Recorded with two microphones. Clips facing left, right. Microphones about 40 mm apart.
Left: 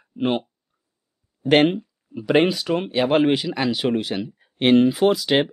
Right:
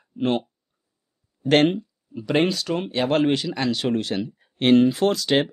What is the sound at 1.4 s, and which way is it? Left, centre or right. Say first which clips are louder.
Speech: left 1 dB; centre.